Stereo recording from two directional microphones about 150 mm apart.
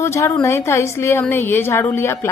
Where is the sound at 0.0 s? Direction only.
20° left (ahead or behind).